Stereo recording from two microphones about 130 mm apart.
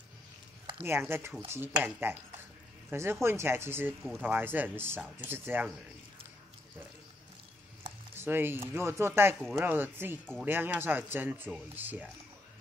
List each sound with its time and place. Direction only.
0.8 s speech: 15° right (ahead or behind)
8.2 s speech: 15° right (ahead or behind)